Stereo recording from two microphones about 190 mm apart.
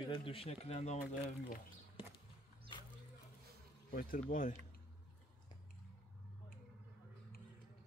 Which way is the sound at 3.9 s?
50° left (ahead or behind).